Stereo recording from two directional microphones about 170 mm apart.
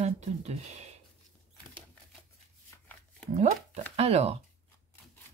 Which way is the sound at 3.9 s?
35° right (ahead or behind).